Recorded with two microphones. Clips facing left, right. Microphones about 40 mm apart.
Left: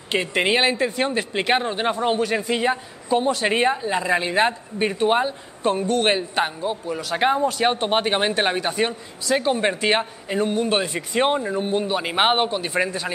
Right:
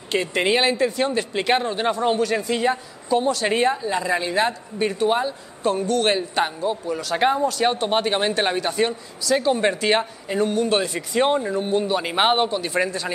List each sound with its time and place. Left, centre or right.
0.1 s speech: centre